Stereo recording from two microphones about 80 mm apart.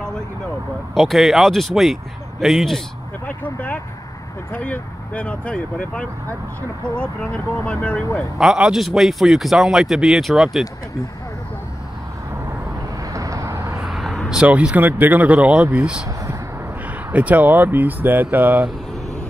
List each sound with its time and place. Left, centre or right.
0.9 s speech: centre
3.3 s speech: left
8.4 s speech: centre
13.1 s vehicle: right
13.6 s vehicle: centre
13.8 s vehicle: centre
14.3 s speech: centre
17.1 s speech: centre